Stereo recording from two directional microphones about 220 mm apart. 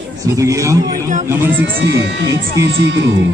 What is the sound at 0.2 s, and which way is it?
A man's voice, 15° right (ahead or behind).